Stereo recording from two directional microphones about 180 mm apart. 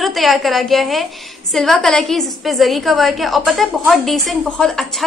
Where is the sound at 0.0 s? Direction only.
Centre (ahead or behind).